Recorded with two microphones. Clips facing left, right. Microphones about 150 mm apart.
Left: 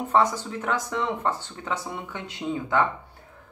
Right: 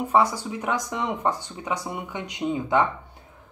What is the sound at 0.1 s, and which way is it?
Speech, 10° right (ahead or behind).